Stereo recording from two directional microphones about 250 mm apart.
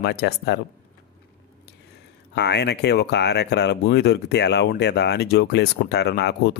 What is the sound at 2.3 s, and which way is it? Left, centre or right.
Speech, left.